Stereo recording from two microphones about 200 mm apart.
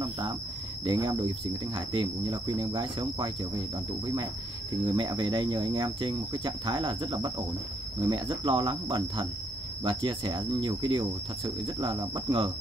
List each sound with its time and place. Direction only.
0.8 s speech: 25° right (ahead or behind)